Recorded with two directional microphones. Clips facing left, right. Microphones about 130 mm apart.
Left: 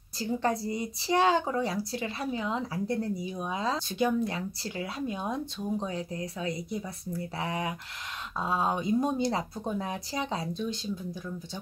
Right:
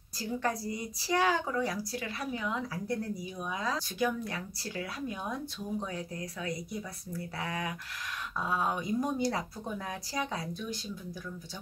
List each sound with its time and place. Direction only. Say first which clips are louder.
0.2 s speech: left 4 dB; 25° left (ahead or behind)